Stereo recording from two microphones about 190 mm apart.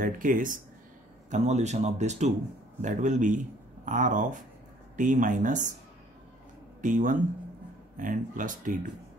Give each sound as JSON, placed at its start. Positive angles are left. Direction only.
{"t": 0.0, "sound": "speech", "side_deg": -45}
{"t": 6.8, "sound": "speech", "side_deg": -45}